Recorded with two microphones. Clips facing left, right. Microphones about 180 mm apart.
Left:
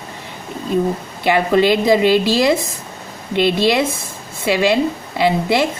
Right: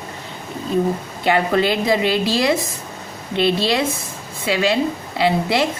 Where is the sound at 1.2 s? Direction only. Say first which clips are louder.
Left 3 dB; 20° left (ahead or behind).